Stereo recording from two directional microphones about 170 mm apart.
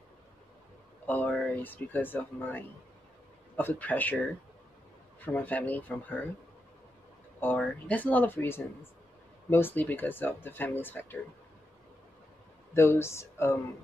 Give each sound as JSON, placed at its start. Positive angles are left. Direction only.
{"t": 1.0, "sound": "speech", "side_deg": 10}
{"t": 5.2, "sound": "speech", "side_deg": 10}
{"t": 7.5, "sound": "speech", "side_deg": 10}
{"t": 12.7, "sound": "speech", "side_deg": 15}